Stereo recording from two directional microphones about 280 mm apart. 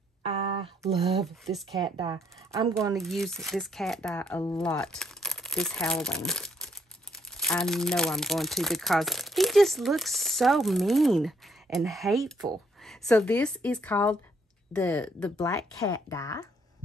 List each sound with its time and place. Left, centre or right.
0.8 s speech: right
1.2 s a woman's voice: centre
1.8 s speech: centre
3.0 s a woman's voice: centre